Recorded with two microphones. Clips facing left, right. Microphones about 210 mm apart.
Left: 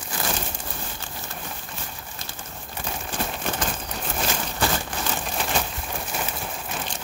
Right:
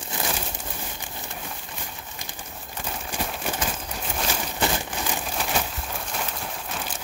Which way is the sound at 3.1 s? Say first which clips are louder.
Left 1 dB; 10° right (ahead or behind).